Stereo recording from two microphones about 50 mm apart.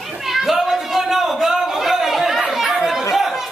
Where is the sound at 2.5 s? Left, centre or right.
Centre.